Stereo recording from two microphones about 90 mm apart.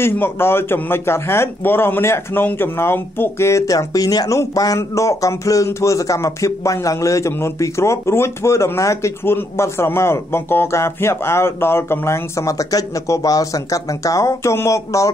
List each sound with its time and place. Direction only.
0.0 s a man's voice: 25° left (ahead or behind)